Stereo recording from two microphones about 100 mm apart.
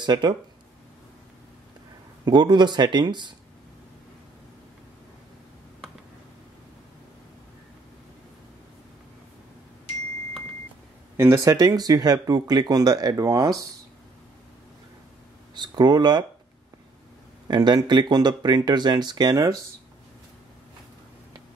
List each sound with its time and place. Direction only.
0.0 s speech: 45° right (ahead or behind)
2.2 s speech: 45° right (ahead or behind)
11.1 s speech: 25° right (ahead or behind)
15.5 s speech: 45° right (ahead or behind)
17.5 s speech: 45° right (ahead or behind)